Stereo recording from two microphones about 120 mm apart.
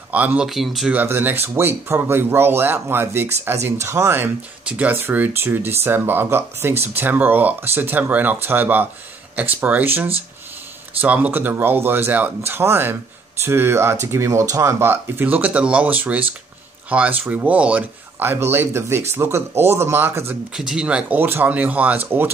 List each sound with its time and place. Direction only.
0.1 s speech: 15° right (ahead or behind)
0.5 s speech: centre (ahead or behind)
0.9 s speech: 15° right (ahead or behind)
20.5 s speech: 5° right (ahead or behind)